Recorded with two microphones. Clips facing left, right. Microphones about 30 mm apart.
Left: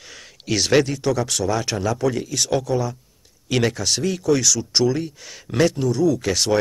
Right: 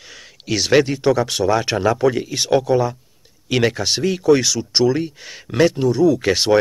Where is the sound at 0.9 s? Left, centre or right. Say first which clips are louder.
Right 5 dB; right.